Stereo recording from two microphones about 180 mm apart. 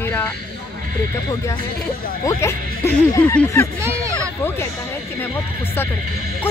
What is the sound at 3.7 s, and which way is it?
Speech, 15° right (ahead or behind).